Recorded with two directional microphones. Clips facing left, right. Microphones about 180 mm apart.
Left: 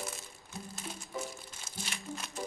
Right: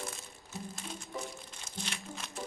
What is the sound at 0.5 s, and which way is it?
Music, 5° left (ahead or behind).